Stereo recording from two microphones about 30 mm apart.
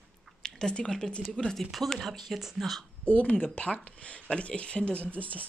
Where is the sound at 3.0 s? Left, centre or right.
Left.